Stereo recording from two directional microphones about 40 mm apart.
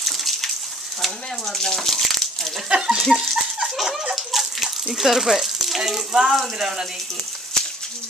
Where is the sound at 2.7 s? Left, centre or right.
Centre.